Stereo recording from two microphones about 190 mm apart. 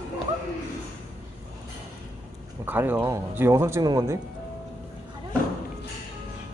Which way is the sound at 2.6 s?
10° right (ahead or behind).